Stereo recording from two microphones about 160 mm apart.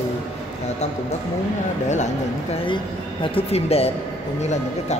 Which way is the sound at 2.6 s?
30° left (ahead or behind).